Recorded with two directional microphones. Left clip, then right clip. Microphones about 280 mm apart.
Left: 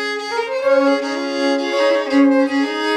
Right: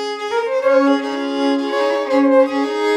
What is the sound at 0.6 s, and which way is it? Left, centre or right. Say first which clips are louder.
Music: even; right.